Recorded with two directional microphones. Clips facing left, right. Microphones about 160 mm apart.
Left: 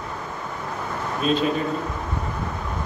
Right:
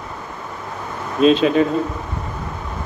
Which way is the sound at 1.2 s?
90° right.